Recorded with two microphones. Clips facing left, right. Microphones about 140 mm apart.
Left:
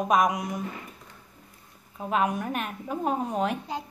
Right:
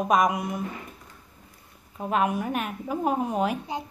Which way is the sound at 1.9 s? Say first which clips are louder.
Right 1 dB; 5° right (ahead or behind).